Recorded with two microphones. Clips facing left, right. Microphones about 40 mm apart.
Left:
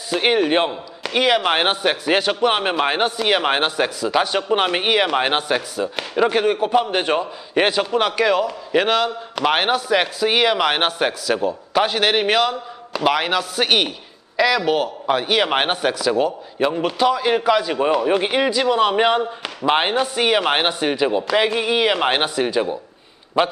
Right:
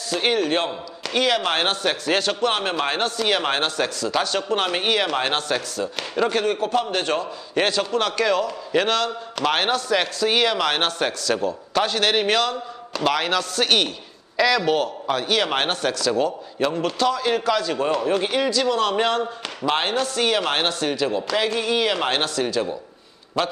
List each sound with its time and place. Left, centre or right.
0.1 s a man's voice: centre